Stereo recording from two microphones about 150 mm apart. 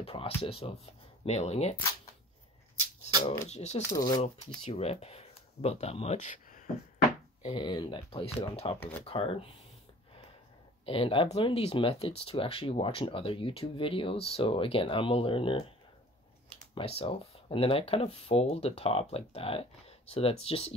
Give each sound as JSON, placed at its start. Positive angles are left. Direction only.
{"t": 0.0, "sound": "speech", "side_deg": 40}
{"t": 3.4, "sound": "speech", "side_deg": 45}
{"t": 3.9, "sound": "speech", "side_deg": 25}
{"t": 4.6, "sound": "speech", "side_deg": 45}
{"t": 7.4, "sound": "speech", "side_deg": 30}
{"t": 10.9, "sound": "speech", "side_deg": 35}
{"t": 16.7, "sound": "speech", "side_deg": 40}